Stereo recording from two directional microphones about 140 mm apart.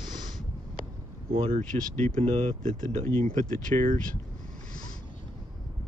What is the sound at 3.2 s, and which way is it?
Speech, 70° right (ahead or behind).